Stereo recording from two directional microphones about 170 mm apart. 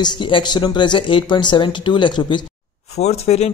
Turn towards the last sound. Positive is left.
turn(degrees=40)  # may be behind; listen again after turning